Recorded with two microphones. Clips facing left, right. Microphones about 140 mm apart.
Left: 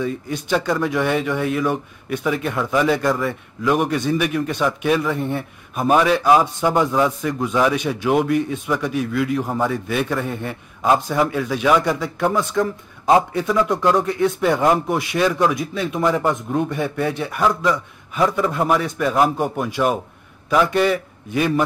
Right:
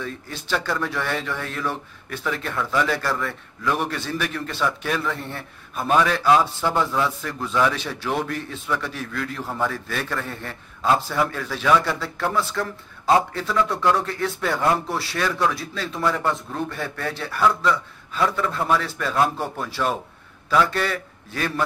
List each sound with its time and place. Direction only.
0.0 s a man's voice: 15° left (ahead or behind)